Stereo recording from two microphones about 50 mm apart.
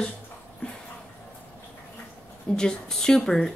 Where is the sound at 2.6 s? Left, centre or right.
Centre.